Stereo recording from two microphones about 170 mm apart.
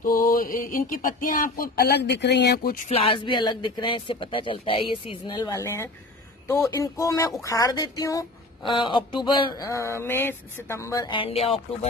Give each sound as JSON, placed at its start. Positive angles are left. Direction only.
{"t": 0.0, "sound": "a sound", "side_deg": 55}
{"t": 2.9, "sound": "speech", "side_deg": 30}
{"t": 11.1, "sound": "speech", "side_deg": 35}